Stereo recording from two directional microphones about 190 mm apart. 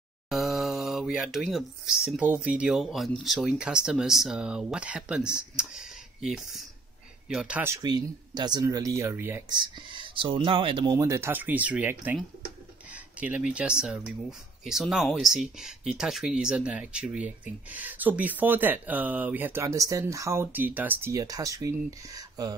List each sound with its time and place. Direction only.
0.3 s mantra: centre (ahead or behind)
2.3 s speech: 5° right (ahead or behind)
9.5 s speech: 25° right (ahead or behind)